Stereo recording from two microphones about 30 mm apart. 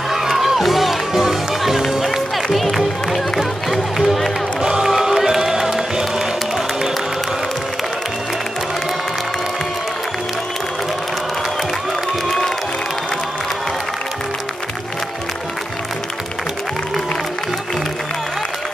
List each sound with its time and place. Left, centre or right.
0.1 s music: centre
4.6 s music: right